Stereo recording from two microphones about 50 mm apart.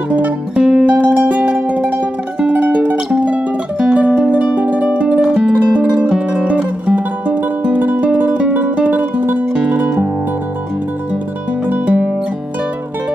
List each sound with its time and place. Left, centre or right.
0.1 s music: right
11.6 s music: right